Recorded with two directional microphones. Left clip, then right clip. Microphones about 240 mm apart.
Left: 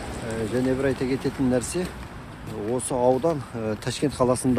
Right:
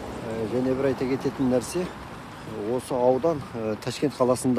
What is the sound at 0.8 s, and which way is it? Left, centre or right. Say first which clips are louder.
Speech: even; centre.